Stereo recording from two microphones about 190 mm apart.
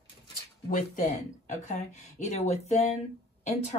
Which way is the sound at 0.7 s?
40° left (ahead or behind).